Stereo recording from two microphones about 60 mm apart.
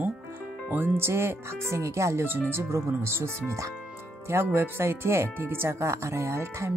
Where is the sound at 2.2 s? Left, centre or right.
Right.